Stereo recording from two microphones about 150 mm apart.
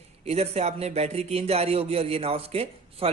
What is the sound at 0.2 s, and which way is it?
A man's voice, 45° right (ahead or behind).